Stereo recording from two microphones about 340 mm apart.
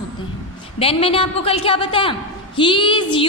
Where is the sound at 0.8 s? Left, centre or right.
Centre.